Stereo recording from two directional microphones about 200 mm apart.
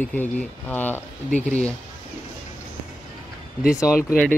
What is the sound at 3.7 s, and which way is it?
Speech, 15° left (ahead or behind).